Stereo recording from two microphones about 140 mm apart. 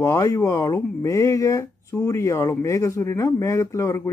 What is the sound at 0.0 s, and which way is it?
Speech, 20° left (ahead or behind).